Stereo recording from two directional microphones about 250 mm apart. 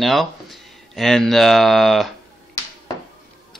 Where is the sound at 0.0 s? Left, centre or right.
Centre.